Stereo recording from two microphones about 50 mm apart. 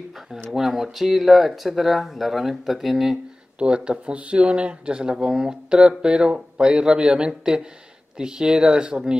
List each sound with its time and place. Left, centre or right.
0.5 s speech: centre
3.5 s speech: right